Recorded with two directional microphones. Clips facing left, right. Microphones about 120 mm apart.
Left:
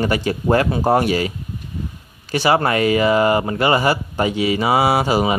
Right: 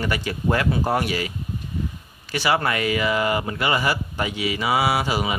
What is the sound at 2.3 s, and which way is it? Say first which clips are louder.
Speech: left 5 dB; 35° left (ahead or behind).